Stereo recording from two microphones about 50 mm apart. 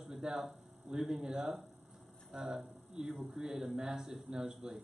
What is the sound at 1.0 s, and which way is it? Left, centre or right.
Speech, centre.